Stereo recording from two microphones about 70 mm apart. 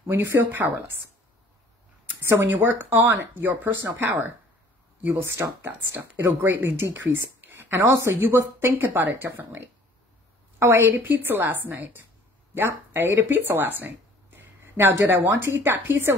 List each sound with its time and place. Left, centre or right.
0.1 s speech: right
2.2 s speech: right
5.4 s speech: right
7.9 s speech: right
10.6 s speech: right